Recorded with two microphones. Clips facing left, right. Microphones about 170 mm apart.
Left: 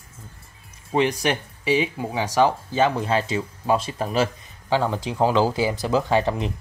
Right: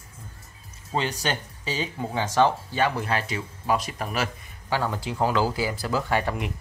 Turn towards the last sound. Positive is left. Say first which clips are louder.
# left 4 dB
turn(degrees=25)  # may be behind; listen again after turning